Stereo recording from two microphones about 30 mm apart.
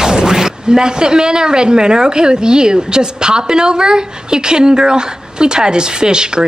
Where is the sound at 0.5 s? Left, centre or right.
Right.